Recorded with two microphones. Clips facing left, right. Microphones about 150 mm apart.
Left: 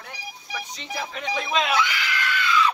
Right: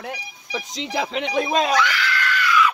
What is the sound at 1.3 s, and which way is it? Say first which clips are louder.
Speech: right 4 dB; 45° right (ahead or behind).